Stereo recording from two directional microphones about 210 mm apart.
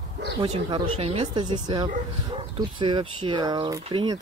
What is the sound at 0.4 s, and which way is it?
Speech, 25° right (ahead or behind).